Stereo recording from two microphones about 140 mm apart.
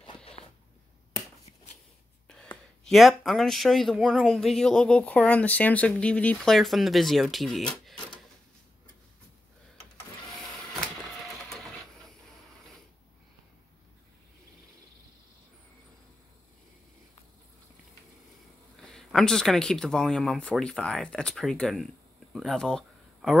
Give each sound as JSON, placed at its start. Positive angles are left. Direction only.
{"t": 0.0, "sound": "a sound", "side_deg": 35}
{"t": 2.2, "sound": "gasp", "side_deg": 10}
{"t": 2.9, "sound": "speech", "side_deg": 0}
{"t": 11.4, "sound": "printer", "side_deg": 5}
{"t": 18.8, "sound": "speech", "side_deg": 5}